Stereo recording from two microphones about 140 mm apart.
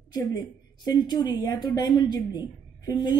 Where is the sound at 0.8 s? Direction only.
30° left (ahead or behind).